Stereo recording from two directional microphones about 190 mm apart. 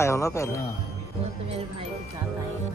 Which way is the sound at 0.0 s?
15° left (ahead or behind).